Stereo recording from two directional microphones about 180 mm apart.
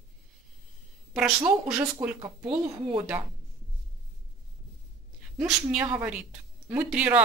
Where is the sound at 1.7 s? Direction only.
10° right (ahead or behind).